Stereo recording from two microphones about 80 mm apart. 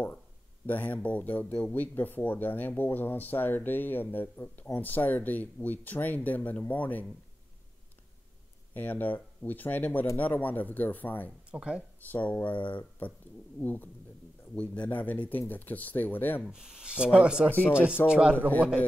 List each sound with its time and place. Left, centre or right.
0.7 s speech: left
8.7 s speech: left
11.5 s speech: centre
12.0 s speech: centre
16.4 s speech: centre
17.5 s speech: left
18.0 s speech: centre